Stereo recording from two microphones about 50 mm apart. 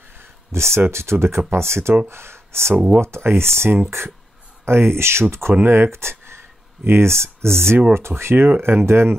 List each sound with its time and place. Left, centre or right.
0.2 s speech: right
8.5 s speech: right